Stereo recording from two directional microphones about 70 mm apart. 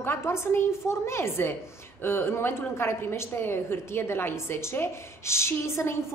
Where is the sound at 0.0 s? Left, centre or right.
Left.